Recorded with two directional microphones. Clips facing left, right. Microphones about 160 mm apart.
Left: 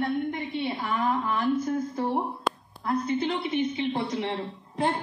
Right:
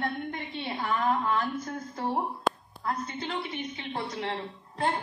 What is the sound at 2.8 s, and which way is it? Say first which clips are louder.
Speech: left 7 dB; 20° left (ahead or behind).